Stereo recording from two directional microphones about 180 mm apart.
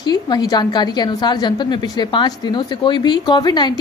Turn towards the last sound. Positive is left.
turn(degrees=25)  # may be behind; listen again after turning